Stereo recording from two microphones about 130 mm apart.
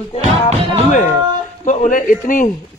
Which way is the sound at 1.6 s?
70° left (ahead or behind).